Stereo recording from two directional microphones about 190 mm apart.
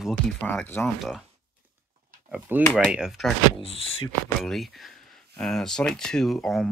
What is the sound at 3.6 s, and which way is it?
Speech, 30° left (ahead or behind).